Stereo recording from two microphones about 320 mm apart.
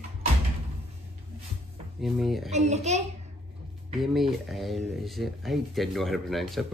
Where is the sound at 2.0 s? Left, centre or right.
Centre.